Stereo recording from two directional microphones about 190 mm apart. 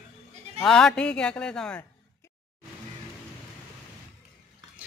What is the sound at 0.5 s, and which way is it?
A man's voice, 5° left (ahead or behind).